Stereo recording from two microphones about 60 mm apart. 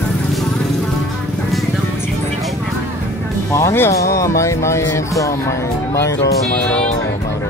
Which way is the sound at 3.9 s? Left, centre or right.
Left.